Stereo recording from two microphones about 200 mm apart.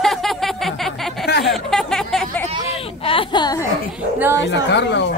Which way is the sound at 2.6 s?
30° left (ahead or behind).